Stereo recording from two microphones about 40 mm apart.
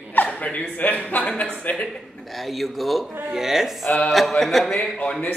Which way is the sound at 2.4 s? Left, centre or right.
Centre.